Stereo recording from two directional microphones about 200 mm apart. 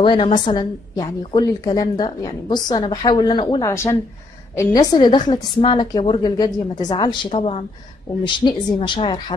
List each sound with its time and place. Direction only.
0.0 s a woman's voice: 25° left (ahead or behind)